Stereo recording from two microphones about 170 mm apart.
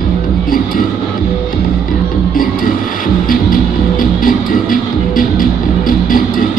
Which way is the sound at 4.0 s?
55° left (ahead or behind).